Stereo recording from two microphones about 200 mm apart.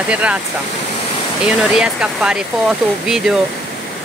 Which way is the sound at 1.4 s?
5° right (ahead or behind).